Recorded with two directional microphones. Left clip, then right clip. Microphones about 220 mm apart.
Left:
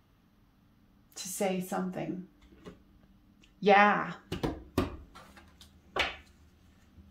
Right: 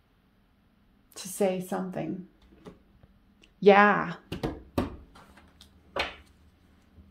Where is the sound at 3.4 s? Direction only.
40° right (ahead or behind).